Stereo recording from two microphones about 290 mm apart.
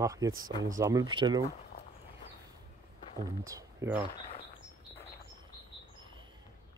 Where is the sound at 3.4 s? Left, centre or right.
Centre.